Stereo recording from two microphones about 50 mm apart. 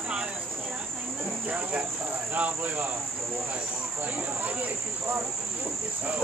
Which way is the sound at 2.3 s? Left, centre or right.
Right.